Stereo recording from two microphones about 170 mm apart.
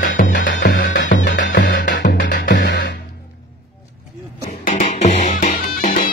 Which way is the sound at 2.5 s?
65° left (ahead or behind).